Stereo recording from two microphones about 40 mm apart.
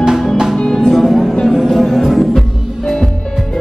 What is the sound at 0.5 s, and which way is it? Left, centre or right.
Music, centre.